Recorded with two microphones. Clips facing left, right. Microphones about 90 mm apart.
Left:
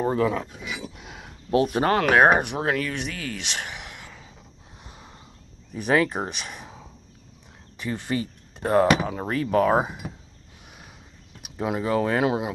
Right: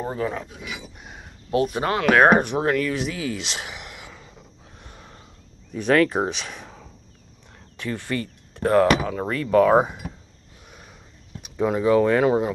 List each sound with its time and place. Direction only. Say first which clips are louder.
0.0 s speech: left 4 dB; 65° left (ahead or behind)
1.0 s a sound: left 1 dB; 90° left
1.5 s speech: left 1 dB; 35° left (ahead or behind)
2.4 s speech: right 4 dB; centre (ahead or behind)
3.4 s a sound: even; 5° right (ahead or behind)
5.8 s speech: right 3 dB; 10° left (ahead or behind)
9.5 s speech: right 5 dB; 5° left (ahead or behind)
11.4 s a sound: right 4 dB; 10° left (ahead or behind)
11.8 s speech: right 5 dB; 5° left (ahead or behind)